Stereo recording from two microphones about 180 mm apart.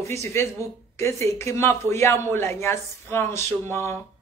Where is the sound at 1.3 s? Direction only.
15° left (ahead or behind).